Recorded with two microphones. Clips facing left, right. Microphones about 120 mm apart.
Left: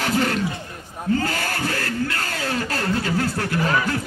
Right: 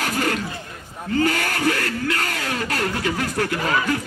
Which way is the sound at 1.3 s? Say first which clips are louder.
Right 3 dB; 60° right (ahead or behind).